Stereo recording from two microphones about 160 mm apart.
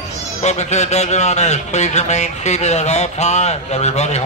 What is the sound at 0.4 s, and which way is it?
A man's voice, 45° left (ahead or behind).